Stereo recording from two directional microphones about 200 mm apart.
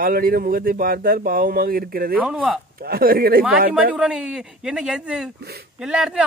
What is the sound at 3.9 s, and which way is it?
A man's voice, 5° right (ahead or behind).